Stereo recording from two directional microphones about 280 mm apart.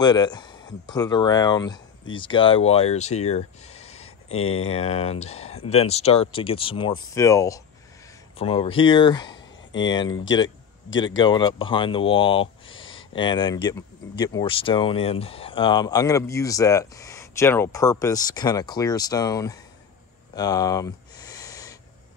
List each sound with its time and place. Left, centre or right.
0.0 s speech: centre
4.3 s speech: left
4.6 s speech: left
20.3 s a sound: centre